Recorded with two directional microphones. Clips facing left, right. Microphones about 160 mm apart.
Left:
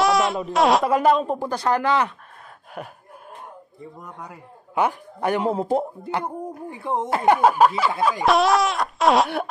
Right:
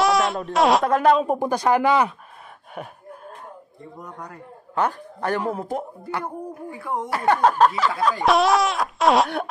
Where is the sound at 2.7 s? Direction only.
Centre (ahead or behind).